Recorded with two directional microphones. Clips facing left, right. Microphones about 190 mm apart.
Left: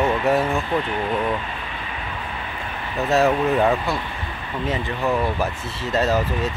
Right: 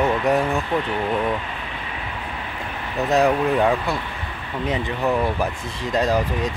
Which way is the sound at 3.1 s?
Centre (ahead or behind).